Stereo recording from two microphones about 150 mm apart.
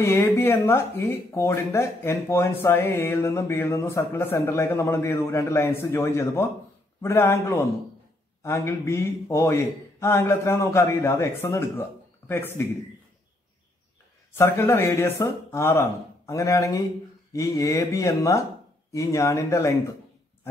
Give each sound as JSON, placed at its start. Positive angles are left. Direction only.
{"t": 0.0, "sound": "a man's voice", "side_deg": 15}
{"t": 14.3, "sound": "a man's voice", "side_deg": 20}